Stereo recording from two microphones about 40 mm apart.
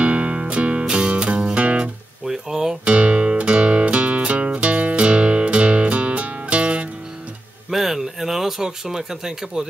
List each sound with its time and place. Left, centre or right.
0.0 s music: right
2.2 s speech: centre
2.8 s guitar: right
7.7 s a sound: centre